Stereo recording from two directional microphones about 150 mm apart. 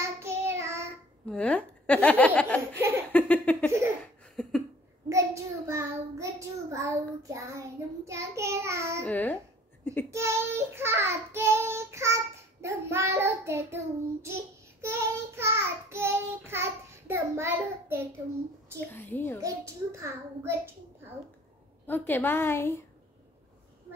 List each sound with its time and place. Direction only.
0.0 s child singing: 15° right (ahead or behind)
1.3 s speech: 10° left (ahead or behind)
3.1 s a sound: 10° left (ahead or behind)
5.1 s a child's voice: 20° right (ahead or behind)
9.0 s speech: 10° left (ahead or behind)
10.1 s child singing: 15° right (ahead or behind)
18.8 s speech: 15° left (ahead or behind)
19.4 s child singing: 20° right (ahead or behind)
21.8 s speech: 15° left (ahead or behind)